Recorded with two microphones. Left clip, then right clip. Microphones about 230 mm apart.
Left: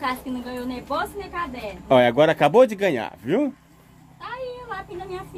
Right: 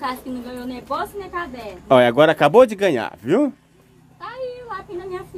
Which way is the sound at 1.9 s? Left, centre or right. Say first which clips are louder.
Right 3 dB; centre.